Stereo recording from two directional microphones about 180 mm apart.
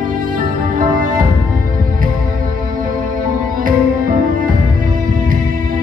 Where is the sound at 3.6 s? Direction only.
50° right (ahead or behind).